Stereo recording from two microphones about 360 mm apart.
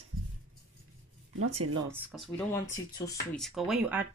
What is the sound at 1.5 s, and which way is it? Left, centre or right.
Speech, centre.